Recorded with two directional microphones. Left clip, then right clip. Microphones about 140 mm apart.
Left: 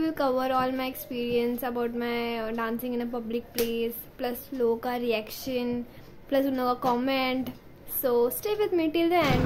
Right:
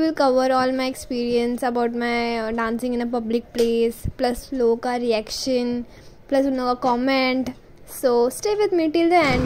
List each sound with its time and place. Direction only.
0.0 s a woman's voice: 30° right (ahead or behind)
6.3 s a woman's voice: 25° right (ahead or behind)